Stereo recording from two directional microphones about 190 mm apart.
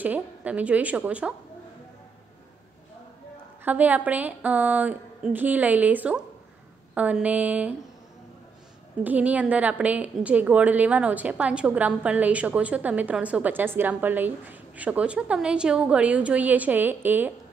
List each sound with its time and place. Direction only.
0.0 s a woman's voice: 10° right (ahead or behind)
3.6 s a woman's voice: 10° right (ahead or behind)
9.0 s a woman's voice: 10° right (ahead or behind)